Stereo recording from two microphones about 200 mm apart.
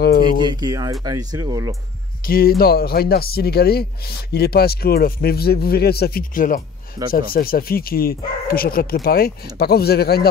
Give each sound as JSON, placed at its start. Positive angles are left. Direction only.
{"t": 0.0, "sound": "speech", "side_deg": 50}
{"t": 0.5, "sound": "speech", "side_deg": -20}
{"t": 2.2, "sound": "speech", "side_deg": 50}